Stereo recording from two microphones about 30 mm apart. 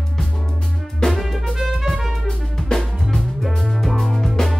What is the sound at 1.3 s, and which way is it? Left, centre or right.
Music, centre.